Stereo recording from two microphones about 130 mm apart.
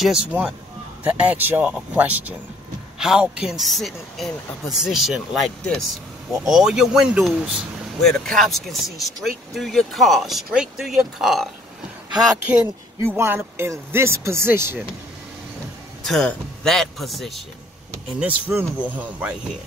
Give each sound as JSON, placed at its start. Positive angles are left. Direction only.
{"t": 0.0, "sound": "speech", "side_deg": -5}
{"t": 13.0, "sound": "speech", "side_deg": -20}
{"t": 16.1, "sound": "speech", "side_deg": 5}
{"t": 18.2, "sound": "speech", "side_deg": -15}